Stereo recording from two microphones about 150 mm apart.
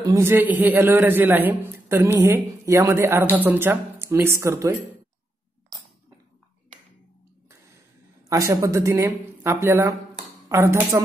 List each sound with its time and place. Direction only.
0.0 s a woman's voice: 20° right (ahead or behind)
8.3 s a woman's voice: 20° right (ahead or behind)